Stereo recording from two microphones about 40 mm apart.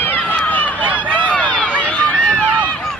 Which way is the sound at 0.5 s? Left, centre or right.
Left.